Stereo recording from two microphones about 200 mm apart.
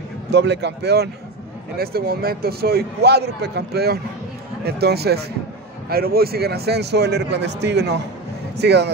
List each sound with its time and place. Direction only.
0.3 s a man's voice: 60° right (ahead or behind)